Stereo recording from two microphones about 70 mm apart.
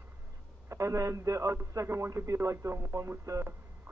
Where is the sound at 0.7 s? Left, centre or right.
Right.